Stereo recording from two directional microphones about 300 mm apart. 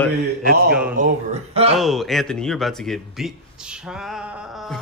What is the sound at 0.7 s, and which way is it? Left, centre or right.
A man's voice, centre.